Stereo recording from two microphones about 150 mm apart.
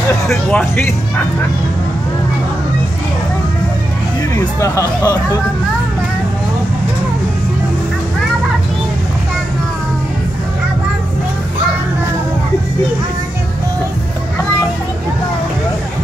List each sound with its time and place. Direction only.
0.3 s speech: 10° left (ahead or behind)
4.4 s speech: 20° left (ahead or behind)